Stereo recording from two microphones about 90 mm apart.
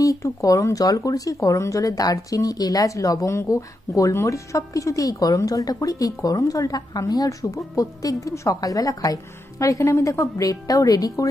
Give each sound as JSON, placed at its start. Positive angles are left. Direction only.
{"t": 0.0, "sound": "speech", "side_deg": 40}